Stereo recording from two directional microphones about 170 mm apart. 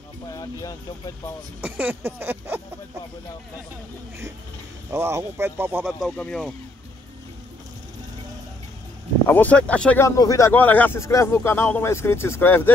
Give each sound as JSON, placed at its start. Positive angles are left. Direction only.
{"t": 0.3, "sound": "speech", "side_deg": 20}
{"t": 1.6, "sound": "speech", "side_deg": -10}
{"t": 4.9, "sound": "speech", "side_deg": -15}
{"t": 9.3, "sound": "speech", "side_deg": 10}